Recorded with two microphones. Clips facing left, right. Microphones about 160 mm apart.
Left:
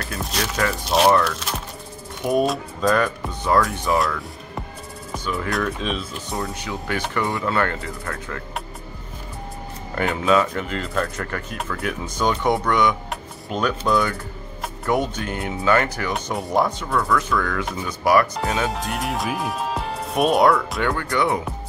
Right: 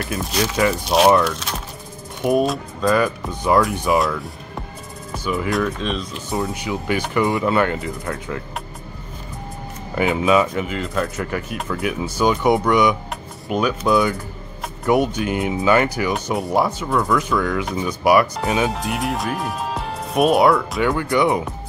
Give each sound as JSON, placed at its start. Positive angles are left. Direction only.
{"t": 0.2, "sound": "speech", "side_deg": 0}
{"t": 5.1, "sound": "speech", "side_deg": -10}
{"t": 6.4, "sound": "speech", "side_deg": -15}
{"t": 9.9, "sound": "speech", "side_deg": -10}
{"t": 18.3, "sound": "speech", "side_deg": 0}